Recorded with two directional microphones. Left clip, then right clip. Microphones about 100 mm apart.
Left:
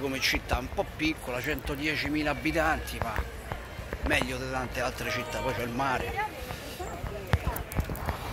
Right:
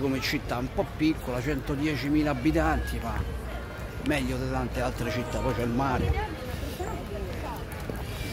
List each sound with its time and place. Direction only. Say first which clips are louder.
0.0 s speech: even; 5° left (ahead or behind)
4.1 s a man's voice: left 1 dB; 20° left (ahead or behind)